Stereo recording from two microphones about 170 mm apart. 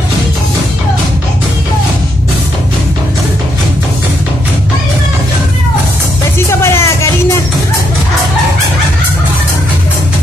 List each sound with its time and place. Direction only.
6.6 s music: 15° left (ahead or behind)